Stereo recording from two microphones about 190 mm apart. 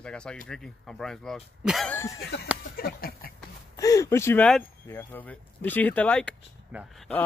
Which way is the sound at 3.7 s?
15° left (ahead or behind).